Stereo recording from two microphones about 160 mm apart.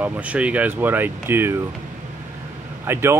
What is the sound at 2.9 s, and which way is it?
Mantra, 15° right (ahead or behind).